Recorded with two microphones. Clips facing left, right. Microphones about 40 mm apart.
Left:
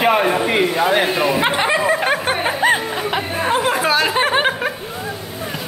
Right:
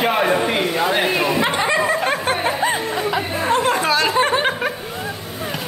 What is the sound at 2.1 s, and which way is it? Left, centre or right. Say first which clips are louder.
Speech: left 1 dB; centre.